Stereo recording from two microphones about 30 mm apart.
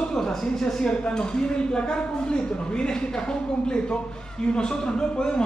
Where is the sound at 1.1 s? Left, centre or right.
Left.